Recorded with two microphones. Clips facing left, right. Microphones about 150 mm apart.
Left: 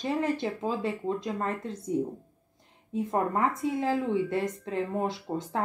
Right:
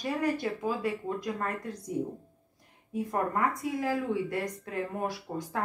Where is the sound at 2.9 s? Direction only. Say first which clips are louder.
Left 2 dB; 25° left (ahead or behind).